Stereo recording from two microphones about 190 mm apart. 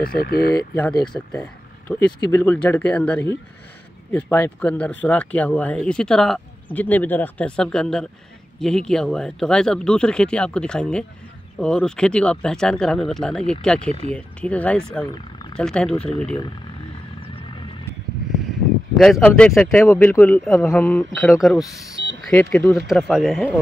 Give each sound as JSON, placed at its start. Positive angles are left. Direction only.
{"t": 0.0, "sound": "speech", "side_deg": 50}
{"t": 1.1, "sound": "speech", "side_deg": 5}
{"t": 18.9, "sound": "speech", "side_deg": 5}